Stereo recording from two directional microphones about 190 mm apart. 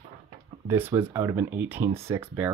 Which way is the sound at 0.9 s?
15° right (ahead or behind).